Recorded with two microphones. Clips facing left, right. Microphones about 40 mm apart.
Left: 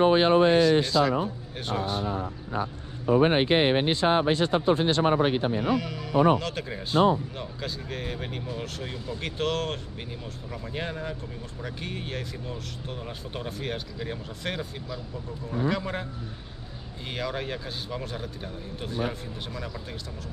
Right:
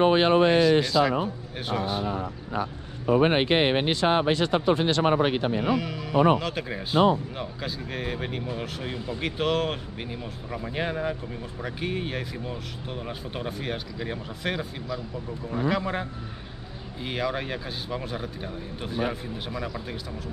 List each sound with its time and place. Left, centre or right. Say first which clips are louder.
0.0 s speech: even; right
1.7 s speech: right 1 dB; centre
3.2 s speech: even; right
5.7 s speech: right 1 dB; centre
17.1 s speech: right 2 dB; centre